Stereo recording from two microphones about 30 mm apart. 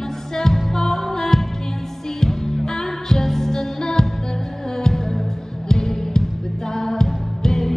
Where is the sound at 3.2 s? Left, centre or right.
Centre.